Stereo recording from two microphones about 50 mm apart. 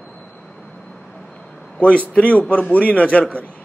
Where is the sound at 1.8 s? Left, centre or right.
Left.